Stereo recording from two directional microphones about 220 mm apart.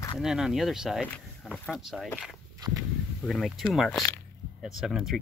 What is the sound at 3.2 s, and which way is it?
Speech, centre (ahead or behind).